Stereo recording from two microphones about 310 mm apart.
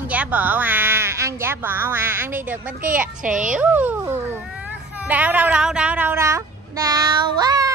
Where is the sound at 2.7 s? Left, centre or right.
Right.